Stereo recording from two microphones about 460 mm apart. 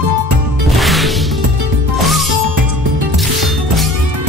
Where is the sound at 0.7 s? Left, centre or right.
Centre.